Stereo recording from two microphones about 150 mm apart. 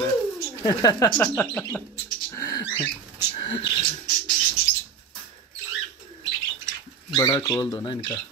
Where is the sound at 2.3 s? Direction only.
20° left (ahead or behind).